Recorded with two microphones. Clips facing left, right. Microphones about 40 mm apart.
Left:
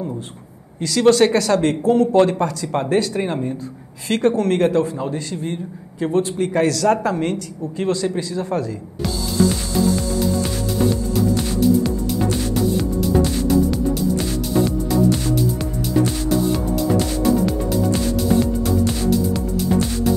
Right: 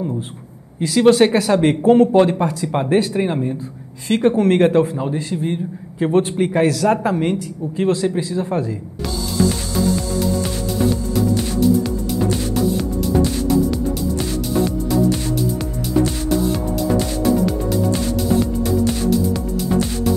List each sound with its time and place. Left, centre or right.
0.7 s a man's voice: centre; by 6.5 s right
6.5 s a man's voice: centre
10.9 s music: centre
14.6 s music: centre
18.3 s music: centre